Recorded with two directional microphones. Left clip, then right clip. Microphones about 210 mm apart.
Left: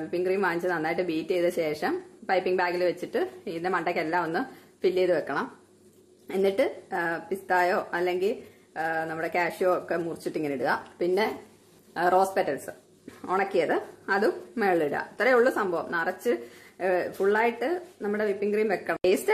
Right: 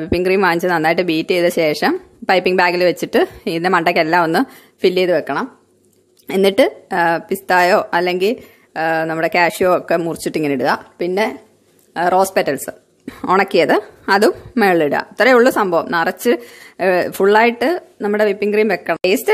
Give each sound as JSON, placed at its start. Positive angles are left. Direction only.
{"t": 0.0, "sound": "a woman's voice", "side_deg": -45}